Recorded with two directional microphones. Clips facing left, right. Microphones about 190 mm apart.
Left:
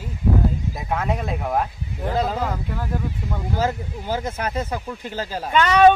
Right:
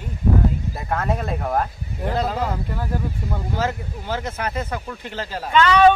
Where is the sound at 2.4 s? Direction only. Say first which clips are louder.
Right 1 dB; 10° right (ahead or behind).